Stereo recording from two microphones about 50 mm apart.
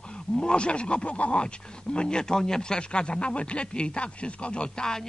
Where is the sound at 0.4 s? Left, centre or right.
Centre.